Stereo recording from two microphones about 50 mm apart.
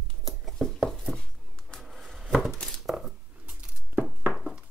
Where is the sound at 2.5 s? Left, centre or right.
Centre.